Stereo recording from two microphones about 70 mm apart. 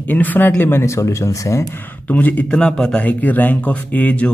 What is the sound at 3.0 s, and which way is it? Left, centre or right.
Speech, left.